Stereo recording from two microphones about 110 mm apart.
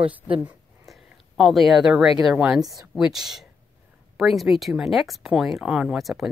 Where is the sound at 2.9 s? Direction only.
5° right (ahead or behind).